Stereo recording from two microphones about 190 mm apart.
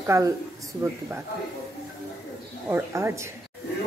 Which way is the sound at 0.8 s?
15° right (ahead or behind).